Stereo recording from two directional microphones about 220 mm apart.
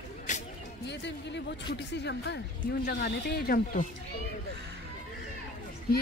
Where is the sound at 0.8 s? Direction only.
50° left (ahead or behind).